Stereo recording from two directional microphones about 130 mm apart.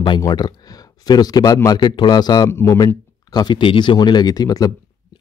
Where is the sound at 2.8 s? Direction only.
30° left (ahead or behind).